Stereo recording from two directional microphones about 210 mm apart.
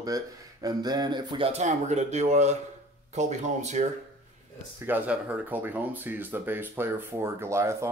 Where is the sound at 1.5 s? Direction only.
35° right (ahead or behind).